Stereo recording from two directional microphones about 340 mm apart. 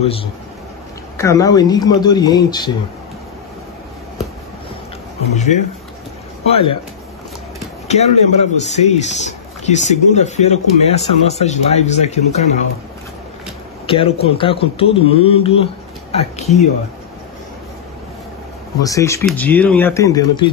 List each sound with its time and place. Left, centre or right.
0.0 s a man's voice: centre
5.3 s a man's voice: left
7.9 s a man's voice: centre
13.8 s a man's voice: centre
18.8 s a man's voice: centre